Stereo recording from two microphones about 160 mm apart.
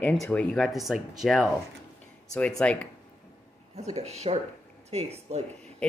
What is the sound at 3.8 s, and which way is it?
Speech, 40° right (ahead or behind).